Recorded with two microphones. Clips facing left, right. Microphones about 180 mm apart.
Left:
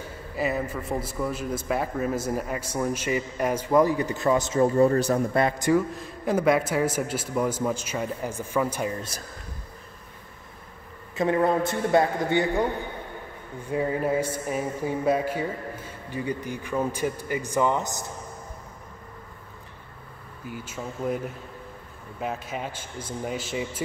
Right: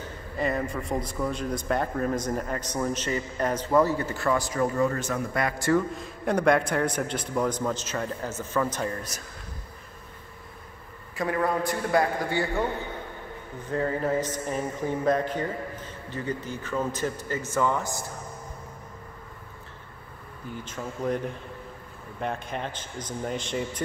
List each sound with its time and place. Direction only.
0.0 s a man's voice: 5° left (ahead or behind); by 5.5 s 30° left (ahead or behind)
5.6 s a man's voice: 15° left (ahead or behind)
5.9 s a man's voice: centre (ahead or behind)
11.1 s a man's voice: 25° left (ahead or behind)
20.4 s a man's voice: 10° left (ahead or behind)
22.2 s a man's voice: 5° left (ahead or behind)